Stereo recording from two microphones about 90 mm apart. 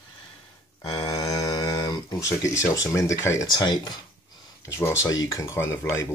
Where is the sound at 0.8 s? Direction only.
45° left (ahead or behind).